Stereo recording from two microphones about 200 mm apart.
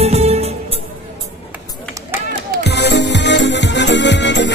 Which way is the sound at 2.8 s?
60° left (ahead or behind).